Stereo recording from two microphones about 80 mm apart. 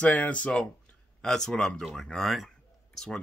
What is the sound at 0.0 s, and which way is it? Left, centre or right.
Speech, centre.